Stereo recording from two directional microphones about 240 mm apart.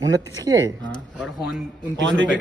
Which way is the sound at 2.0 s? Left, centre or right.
Right.